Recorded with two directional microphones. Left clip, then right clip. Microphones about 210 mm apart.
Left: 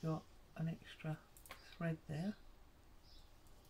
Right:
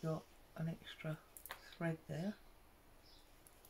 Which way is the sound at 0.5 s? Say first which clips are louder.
Right 1 dB; 15° right (ahead or behind).